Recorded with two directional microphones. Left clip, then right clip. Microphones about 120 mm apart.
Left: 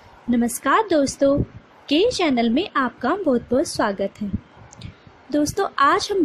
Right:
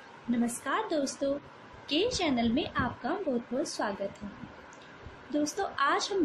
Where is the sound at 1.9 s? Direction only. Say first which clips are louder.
Left 10 dB; 90° left.